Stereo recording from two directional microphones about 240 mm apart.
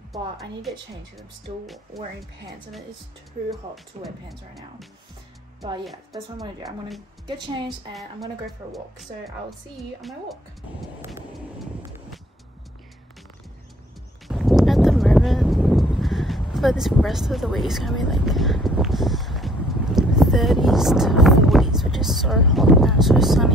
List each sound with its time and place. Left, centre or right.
0.1 s speech: centre
3.4 s speech: centre
7.2 s a woman's voice: centre
7.9 s speech: centre
14.2 s a sound: centre